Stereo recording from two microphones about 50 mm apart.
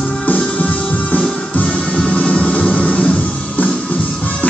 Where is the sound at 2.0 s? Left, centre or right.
Left.